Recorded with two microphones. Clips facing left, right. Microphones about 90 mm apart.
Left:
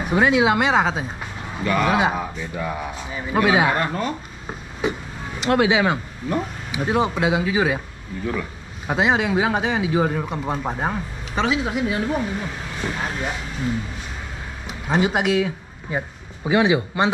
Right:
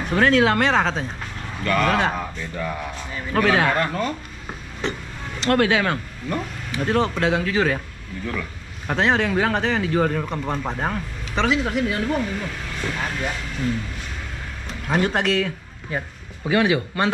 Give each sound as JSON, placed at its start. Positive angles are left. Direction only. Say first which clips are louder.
{"t": 0.0, "sound": "a man's voice", "louder": "even", "side_deg": 10}
{"t": 14.9, "sound": "a man's voice", "louder": "left 1 dB", "side_deg": 10}